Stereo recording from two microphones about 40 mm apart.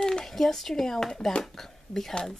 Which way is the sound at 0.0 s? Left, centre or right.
Centre.